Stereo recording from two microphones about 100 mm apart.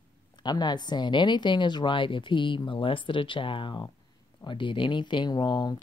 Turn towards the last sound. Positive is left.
turn(degrees=45)  # may be behind; listen again after turning